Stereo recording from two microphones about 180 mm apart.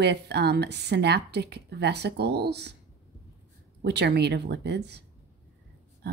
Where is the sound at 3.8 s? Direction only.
65° right (ahead or behind).